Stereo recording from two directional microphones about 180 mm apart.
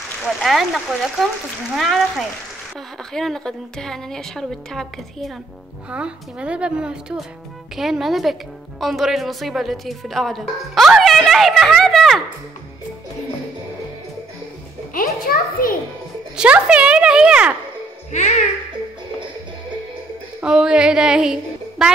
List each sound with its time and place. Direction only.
0.4 s speech: centre (ahead or behind)
14.9 s a child's voice: 50° left (ahead or behind)
16.3 s speech: 5° right (ahead or behind)
18.1 s a child's voice: 40° left (ahead or behind)
20.3 s a woman's voice: 5° right (ahead or behind)